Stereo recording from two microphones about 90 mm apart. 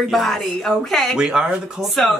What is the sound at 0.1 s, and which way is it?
Speech, 5° left (ahead or behind).